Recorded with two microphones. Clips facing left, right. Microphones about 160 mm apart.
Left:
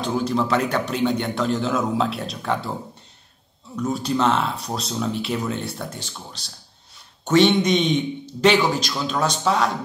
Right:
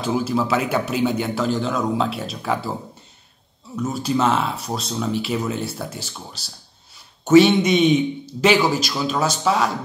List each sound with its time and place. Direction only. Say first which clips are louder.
0.0 s speech: right 1 dB; 5° right (ahead or behind)
3.7 s speech: right 1 dB; 5° right (ahead or behind)